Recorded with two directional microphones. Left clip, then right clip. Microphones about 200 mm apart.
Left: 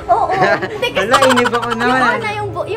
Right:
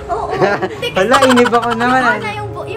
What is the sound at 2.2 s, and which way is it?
Music, 55° left (ahead or behind).